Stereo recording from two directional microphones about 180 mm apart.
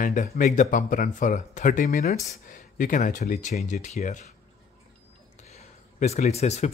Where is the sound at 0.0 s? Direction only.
45° left (ahead or behind).